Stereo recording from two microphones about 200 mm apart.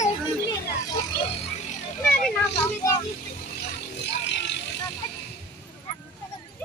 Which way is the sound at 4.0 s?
60° left (ahead or behind).